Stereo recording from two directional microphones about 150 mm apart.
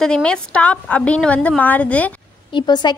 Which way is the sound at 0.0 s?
5° left (ahead or behind).